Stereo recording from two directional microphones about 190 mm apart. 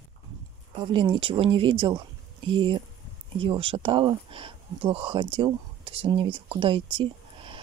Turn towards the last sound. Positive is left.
turn(degrees=-25)  # may be behind; listen again after turning